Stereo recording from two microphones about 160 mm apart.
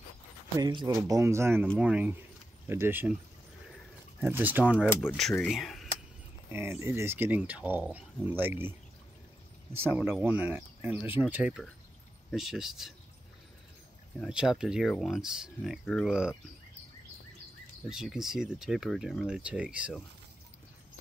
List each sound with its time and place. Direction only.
0.6 s speech: 25° right (ahead or behind)
4.2 s speech: 10° right (ahead or behind)
5.5 s speech: centre (ahead or behind)
6.5 s speech: 15° right (ahead or behind)
9.8 s speech: 15° right (ahead or behind)
14.2 s speech: 5° right (ahead or behind)
17.8 s speech: 5° right (ahead or behind)